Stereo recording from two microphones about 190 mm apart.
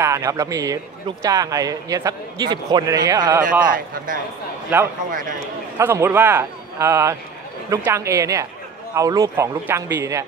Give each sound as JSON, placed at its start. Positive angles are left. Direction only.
{"t": 0.0, "sound": "a man's voice", "side_deg": -15}
{"t": 3.6, "sound": "a man's voice", "side_deg": -45}
{"t": 4.7, "sound": "a man's voice", "side_deg": -10}